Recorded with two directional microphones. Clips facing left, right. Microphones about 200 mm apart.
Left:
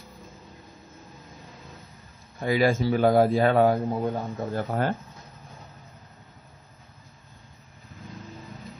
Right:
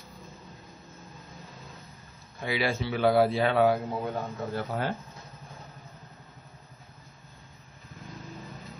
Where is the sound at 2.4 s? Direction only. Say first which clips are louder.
Left 7 dB; 50° left (ahead or behind).